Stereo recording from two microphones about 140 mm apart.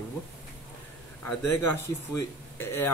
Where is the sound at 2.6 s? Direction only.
15° left (ahead or behind).